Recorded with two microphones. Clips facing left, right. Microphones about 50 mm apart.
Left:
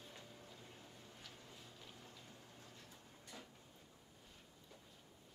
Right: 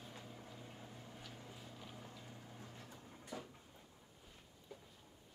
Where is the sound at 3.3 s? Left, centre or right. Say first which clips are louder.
Right 8 dB; right.